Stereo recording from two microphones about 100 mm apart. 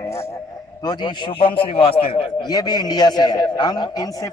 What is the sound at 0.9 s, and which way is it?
Speech, 50° left (ahead or behind).